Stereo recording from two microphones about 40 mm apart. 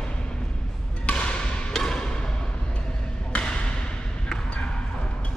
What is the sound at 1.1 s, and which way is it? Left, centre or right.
Music, left.